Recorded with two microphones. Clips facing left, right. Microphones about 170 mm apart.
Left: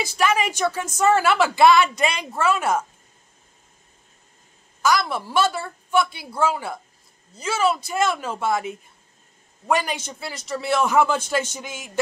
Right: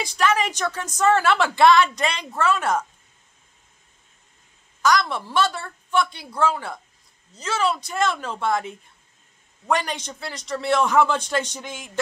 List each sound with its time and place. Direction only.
0.0 s a man's voice: 10° left (ahead or behind)
4.8 s a man's voice: 5° left (ahead or behind)